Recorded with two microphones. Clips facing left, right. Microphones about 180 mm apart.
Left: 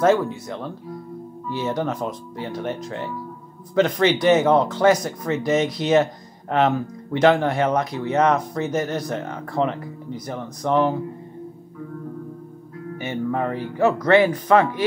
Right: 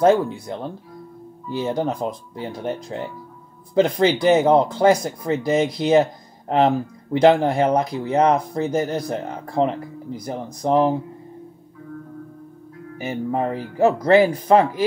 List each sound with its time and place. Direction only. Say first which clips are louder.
0.0 s speech: right 2 dB; 30° right (ahead or behind)
12.9 s speech: right 1 dB; 35° right (ahead or behind)